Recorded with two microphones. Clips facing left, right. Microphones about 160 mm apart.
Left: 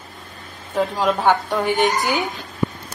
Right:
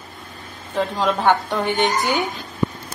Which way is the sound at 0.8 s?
Centre (ahead or behind).